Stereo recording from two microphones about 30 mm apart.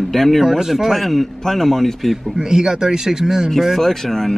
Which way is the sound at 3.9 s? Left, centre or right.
Centre.